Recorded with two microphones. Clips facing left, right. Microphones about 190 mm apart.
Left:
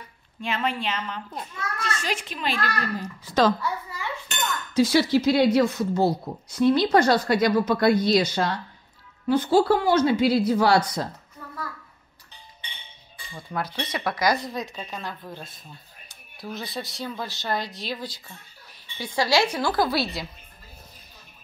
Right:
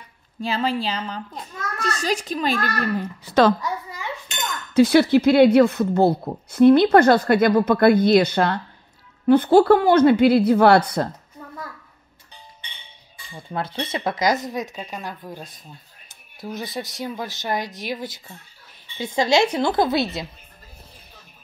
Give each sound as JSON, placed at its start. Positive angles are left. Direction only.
{"t": 0.4, "sound": "a child's voice", "side_deg": -35}
{"t": 3.3, "sound": "a woman's voice", "side_deg": -60}
{"t": 4.7, "sound": "a woman's voice", "side_deg": -60}
{"t": 11.4, "sound": "a sound", "side_deg": -20}
{"t": 13.5, "sound": "a woman's voice", "side_deg": -25}